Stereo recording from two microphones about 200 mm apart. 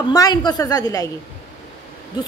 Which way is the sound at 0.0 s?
20° left (ahead or behind).